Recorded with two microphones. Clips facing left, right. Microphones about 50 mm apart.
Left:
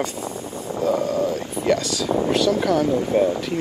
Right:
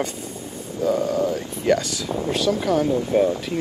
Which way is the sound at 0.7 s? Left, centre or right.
Left.